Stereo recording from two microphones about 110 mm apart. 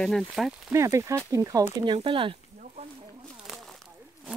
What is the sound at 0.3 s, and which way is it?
Speech, 5° right (ahead or behind).